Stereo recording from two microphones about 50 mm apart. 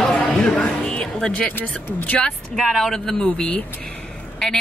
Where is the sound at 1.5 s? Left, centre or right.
Left.